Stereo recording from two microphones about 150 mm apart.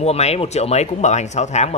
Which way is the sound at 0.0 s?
45° left (ahead or behind).